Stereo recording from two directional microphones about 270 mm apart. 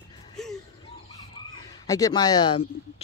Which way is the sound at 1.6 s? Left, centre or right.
Centre.